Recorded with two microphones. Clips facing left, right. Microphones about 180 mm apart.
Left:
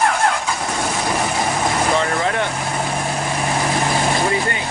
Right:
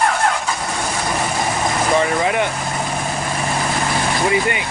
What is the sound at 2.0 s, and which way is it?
Vehicle, 10° right (ahead or behind).